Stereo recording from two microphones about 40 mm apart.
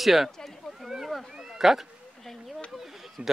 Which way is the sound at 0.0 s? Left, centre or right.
Centre.